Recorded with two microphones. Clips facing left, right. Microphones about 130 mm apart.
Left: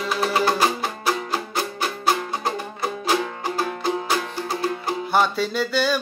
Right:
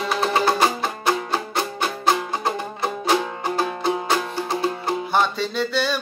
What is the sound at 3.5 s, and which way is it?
Music, 25° right (ahead or behind).